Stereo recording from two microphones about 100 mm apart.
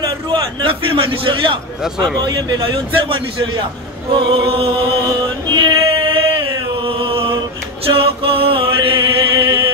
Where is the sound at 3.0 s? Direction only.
60° right (ahead or behind).